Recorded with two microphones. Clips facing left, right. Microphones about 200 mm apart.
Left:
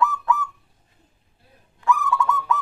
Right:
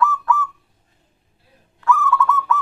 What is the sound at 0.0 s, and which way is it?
Owl, 15° left (ahead or behind).